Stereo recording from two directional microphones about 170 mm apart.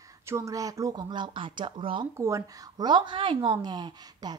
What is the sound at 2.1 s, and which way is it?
Speech, 20° right (ahead or behind).